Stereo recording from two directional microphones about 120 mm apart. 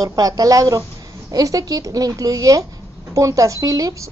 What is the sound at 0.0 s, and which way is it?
A woman's voice, 30° right (ahead or behind).